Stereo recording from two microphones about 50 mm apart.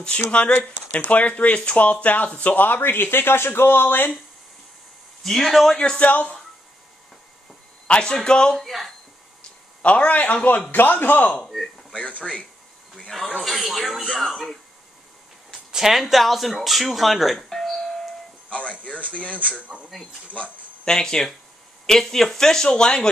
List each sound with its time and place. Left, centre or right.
0.1 s speech: left
5.2 s speech: centre
5.8 s speech: left
7.8 s speech: centre
8.5 s speech: centre
9.8 s speech: left
11.4 s a sound: centre
11.9 s speech: left
13.1 s speech: centre
15.7 s speech: centre
18.5 s a sound: left
20.8 s speech: centre